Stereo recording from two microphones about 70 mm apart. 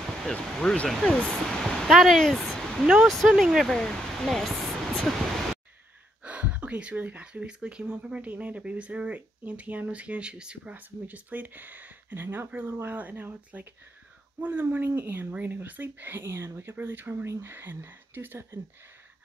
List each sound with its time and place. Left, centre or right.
0.2 s speech: centre
3.6 s a sound: centre
6.2 s speech: centre
16.3 s speech: right